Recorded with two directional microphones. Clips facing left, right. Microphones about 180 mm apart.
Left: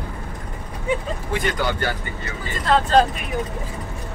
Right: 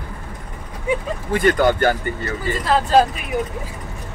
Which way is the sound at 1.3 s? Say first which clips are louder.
Right 8 dB; 50° right (ahead or behind).